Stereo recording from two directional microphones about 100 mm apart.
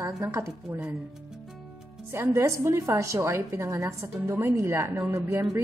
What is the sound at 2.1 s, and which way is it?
A woman's voice, 30° right (ahead or behind).